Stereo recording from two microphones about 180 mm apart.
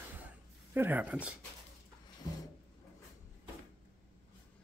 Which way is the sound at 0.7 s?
10° right (ahead or behind).